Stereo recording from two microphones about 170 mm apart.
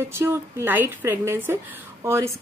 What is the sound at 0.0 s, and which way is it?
Speech, 15° right (ahead or behind).